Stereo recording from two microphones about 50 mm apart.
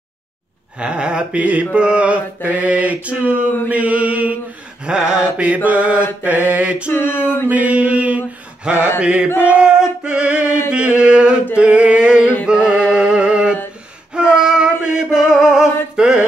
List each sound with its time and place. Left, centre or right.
0.7 s mantra: right
4.8 s a sound: centre
5.4 s mantra: right
6.9 s a sound: left
7.4 s mantra: right
8.6 s a sound: centre
9.0 s mantra: right
9.4 s singing: right
10.7 s chant: right
11.5 s a sound: right
12.9 s music: centre
14.4 s male singing: centre